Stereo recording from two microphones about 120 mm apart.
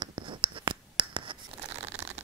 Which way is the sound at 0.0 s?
45° right (ahead or behind).